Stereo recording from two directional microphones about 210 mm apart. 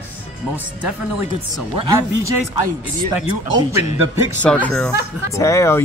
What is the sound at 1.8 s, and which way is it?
Speech, 15° right (ahead or behind).